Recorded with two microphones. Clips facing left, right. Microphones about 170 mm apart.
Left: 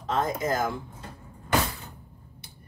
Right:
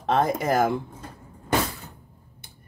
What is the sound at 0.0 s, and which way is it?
Speech, 70° right (ahead or behind).